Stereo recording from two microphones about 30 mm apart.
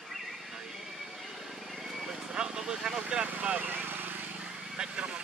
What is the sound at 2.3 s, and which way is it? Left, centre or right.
Vehicle, right.